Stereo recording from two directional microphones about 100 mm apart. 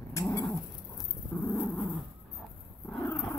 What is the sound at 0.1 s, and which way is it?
Dog, 35° left (ahead or behind).